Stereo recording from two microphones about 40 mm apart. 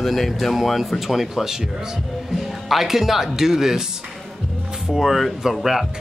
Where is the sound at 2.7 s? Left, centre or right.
Centre.